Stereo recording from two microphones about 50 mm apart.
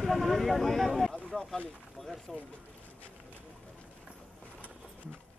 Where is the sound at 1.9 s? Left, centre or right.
Centre.